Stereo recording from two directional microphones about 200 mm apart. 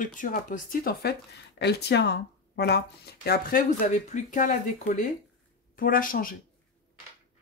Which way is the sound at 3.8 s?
35° left (ahead or behind).